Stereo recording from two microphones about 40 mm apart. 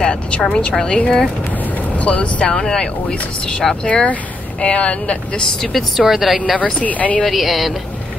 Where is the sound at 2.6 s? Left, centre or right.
Left.